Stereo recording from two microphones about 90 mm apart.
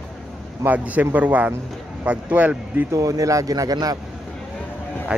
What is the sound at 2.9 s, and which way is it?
Speech, 40° right (ahead or behind).